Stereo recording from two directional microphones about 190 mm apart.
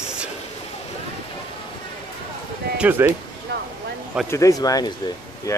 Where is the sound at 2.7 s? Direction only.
10° right (ahead or behind).